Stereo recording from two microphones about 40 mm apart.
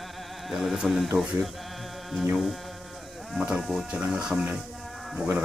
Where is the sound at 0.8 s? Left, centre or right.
Centre.